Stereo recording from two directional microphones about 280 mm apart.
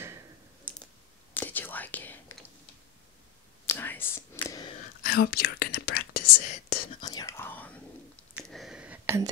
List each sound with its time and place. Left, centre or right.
1.3 s whispering: centre
3.6 s whispering: centre
5.0 s whispering: left
7.0 s whispering: centre
8.4 s a sound: centre